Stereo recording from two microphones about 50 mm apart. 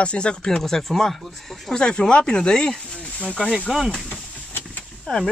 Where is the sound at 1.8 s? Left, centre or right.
Centre.